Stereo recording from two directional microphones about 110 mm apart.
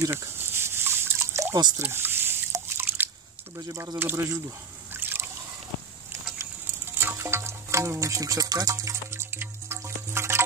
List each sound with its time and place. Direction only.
0.0 s liquid: 25° right (ahead or behind)
1.8 s drip: 20° right (ahead or behind)
3.5 s speech: 30° right (ahead or behind)
4.9 s boat: 20° right (ahead or behind)
7.0 s music: 20° right (ahead or behind)